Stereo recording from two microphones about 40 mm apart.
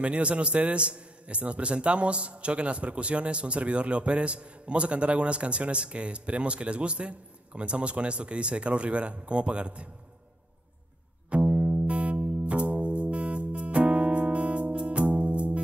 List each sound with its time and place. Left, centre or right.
0.0 s a man's voice: right
11.2 s music: right